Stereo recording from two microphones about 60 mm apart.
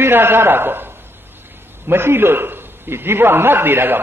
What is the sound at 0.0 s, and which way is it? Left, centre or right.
A man's voice, right.